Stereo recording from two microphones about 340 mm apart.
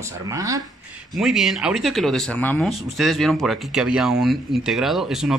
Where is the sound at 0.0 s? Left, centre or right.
Centre.